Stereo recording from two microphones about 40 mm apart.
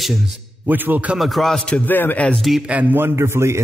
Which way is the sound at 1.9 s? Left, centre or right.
Left.